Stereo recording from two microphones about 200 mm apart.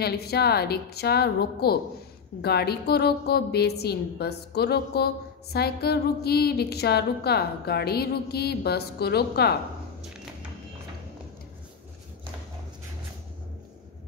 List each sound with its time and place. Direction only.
0.0 s a woman's voice: 55° left (ahead or behind)